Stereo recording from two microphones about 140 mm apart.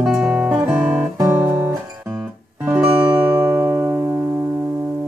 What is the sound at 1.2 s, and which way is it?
Guitar, 15° right (ahead or behind).